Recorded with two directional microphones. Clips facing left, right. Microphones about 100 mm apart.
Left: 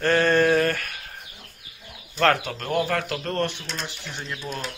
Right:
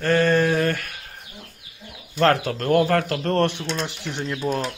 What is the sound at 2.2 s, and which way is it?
Speech, 30° right (ahead or behind).